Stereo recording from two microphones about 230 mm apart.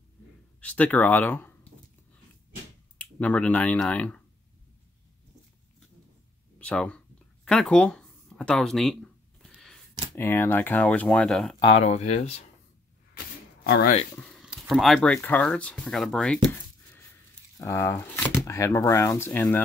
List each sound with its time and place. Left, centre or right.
0.6 s speech: centre
3.0 s speech: centre
6.6 s speech: centre
7.4 s a sound: centre
10.1 s speech: centre
11.6 s speech: left
14.1 s speech: centre